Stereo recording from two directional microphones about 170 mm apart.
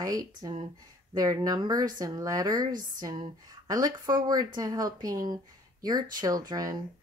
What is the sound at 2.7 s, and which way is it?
Speech, 50° right (ahead or behind).